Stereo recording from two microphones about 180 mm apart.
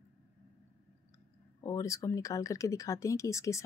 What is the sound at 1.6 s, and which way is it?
A woman's voice, 20° left (ahead or behind).